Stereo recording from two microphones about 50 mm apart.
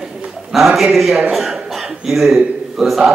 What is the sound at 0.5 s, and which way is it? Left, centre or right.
Speech, centre.